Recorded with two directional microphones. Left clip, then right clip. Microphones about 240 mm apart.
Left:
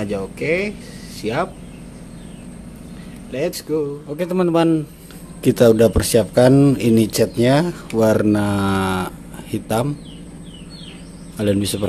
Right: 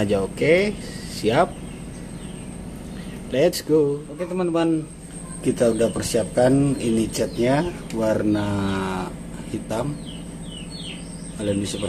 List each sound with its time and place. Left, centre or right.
0.0 s speech: centre
3.3 s speech: centre
4.2 s speech: left
11.3 s speech: left